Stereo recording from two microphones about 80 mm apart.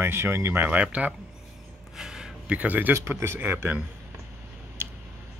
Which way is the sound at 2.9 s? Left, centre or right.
Right.